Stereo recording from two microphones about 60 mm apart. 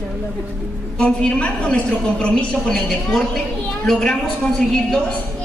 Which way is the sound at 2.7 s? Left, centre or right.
Centre.